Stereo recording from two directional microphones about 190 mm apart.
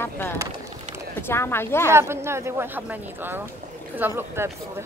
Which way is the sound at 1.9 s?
15° right (ahead or behind).